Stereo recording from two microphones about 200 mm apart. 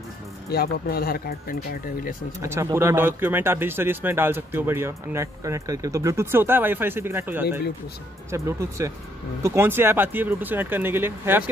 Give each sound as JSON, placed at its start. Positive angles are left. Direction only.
{"t": 0.5, "sound": "speech", "side_deg": 50}
{"t": 2.4, "sound": "speech", "side_deg": -15}